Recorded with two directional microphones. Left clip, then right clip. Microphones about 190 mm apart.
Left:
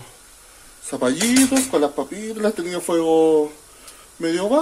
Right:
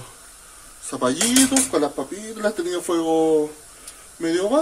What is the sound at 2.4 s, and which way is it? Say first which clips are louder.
Speech: left 1 dB; 20° left (ahead or behind).